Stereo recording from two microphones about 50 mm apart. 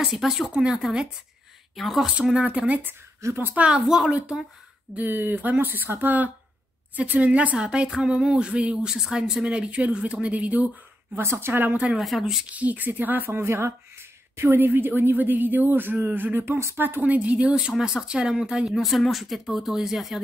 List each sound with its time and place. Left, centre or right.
0.0 s speech: centre
1.8 s speech: centre
2.3 s a woman's voice: right
4.9 s a woman's voice: right
7.5 s a woman's voice: centre
11.1 s a woman's voice: right
12.0 s speech: centre
12.4 s a woman's voice: right
14.3 s a woman's voice: right
16.5 s speech: right
17.0 s a woman's voice: right; by 20.2 s centre